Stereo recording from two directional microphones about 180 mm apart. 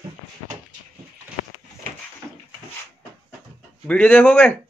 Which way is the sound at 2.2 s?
10° left (ahead or behind).